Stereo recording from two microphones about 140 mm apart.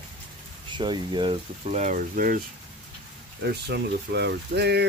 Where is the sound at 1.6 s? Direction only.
55° right (ahead or behind); by 2.4 s 80° right.